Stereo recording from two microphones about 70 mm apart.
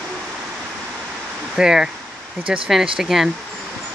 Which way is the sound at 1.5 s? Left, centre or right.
Centre.